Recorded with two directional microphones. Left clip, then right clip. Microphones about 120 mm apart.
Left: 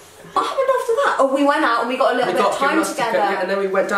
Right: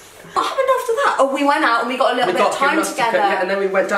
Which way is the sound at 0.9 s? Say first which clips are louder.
Even; 5° right (ahead or behind).